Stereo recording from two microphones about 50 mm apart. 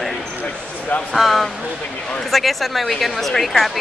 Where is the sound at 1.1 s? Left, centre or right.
Centre.